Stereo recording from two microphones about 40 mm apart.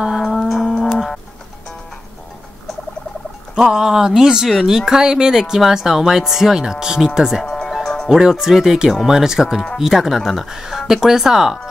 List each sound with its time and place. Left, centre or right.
0.2 s music: centre
3.6 s speech: centre
7.6 s music: centre
8.1 s speech: centre